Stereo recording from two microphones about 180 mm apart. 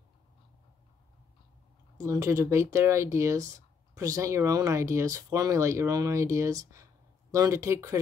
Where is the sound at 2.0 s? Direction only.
15° right (ahead or behind).